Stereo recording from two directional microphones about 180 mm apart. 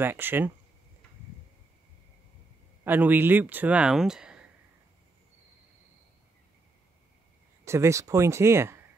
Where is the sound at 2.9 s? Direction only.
10° right (ahead or behind).